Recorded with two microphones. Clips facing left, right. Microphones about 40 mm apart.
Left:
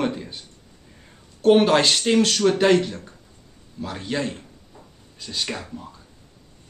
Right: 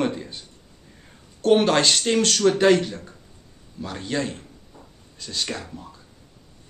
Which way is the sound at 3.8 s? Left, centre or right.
Centre.